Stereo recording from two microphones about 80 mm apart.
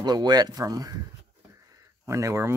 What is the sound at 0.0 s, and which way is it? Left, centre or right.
Speech, right.